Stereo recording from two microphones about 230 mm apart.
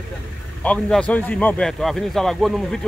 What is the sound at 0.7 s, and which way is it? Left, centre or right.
A man's voice, centre.